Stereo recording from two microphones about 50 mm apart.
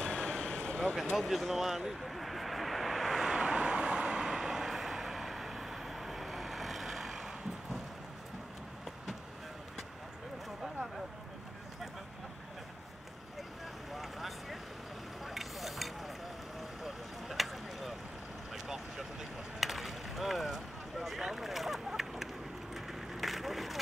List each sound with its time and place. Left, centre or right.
0.0 s a sound: centre
1.3 s vehicle: centre
13.9 s vehicle: centre
15.2 s stir: centre
16.8 s vehicle: centre
18.5 s a sound: centre